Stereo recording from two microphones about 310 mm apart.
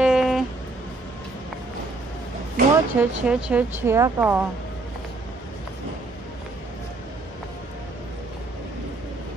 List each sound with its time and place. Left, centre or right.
0.0 s vehicle: centre
2.6 s a sound: right
3.0 s a woman's voice: centre